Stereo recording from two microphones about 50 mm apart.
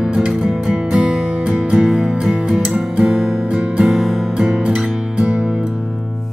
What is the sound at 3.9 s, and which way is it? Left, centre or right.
Music, centre.